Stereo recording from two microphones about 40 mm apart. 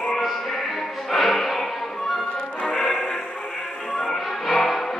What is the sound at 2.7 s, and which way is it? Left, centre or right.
Music, left.